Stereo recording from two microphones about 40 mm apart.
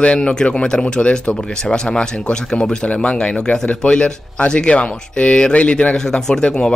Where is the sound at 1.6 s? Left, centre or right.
Centre.